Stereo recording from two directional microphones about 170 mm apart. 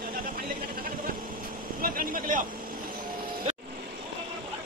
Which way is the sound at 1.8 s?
55° right (ahead or behind).